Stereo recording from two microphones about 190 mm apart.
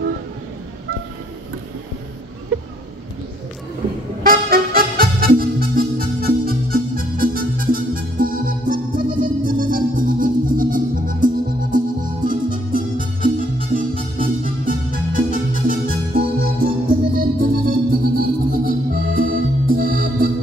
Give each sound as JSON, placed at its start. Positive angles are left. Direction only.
{"t": 4.2, "sound": "music", "side_deg": -50}